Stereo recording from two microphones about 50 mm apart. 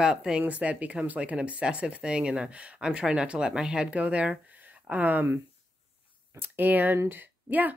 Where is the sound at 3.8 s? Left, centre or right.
Right.